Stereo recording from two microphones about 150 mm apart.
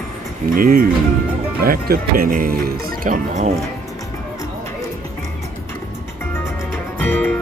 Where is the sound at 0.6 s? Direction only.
75° right (ahead or behind).